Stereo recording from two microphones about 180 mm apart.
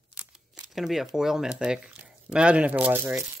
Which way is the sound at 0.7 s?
Centre (ahead or behind).